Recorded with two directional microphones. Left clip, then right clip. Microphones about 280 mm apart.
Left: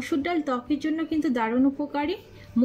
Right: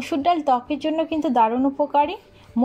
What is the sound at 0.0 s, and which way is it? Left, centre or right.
A woman's voice, left.